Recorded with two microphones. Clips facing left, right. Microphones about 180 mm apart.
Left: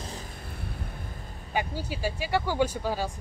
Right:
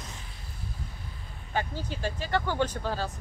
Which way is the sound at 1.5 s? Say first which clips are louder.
Left 1 dB; 10° left (ahead or behind).